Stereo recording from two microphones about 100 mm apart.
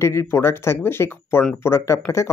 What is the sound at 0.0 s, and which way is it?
Speech, 25° left (ahead or behind).